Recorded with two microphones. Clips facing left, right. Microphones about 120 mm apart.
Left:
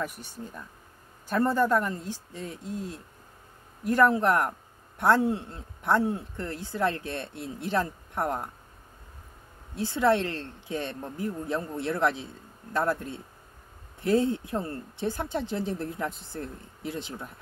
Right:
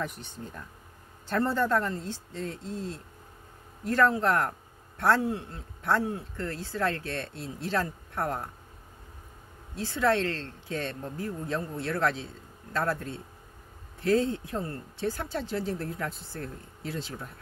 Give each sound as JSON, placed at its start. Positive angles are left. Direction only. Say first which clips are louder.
{"t": 0.0, "sound": "speech", "louder": "left 1 dB", "side_deg": 10}
{"t": 9.8, "sound": "speech", "louder": "left 2 dB", "side_deg": 20}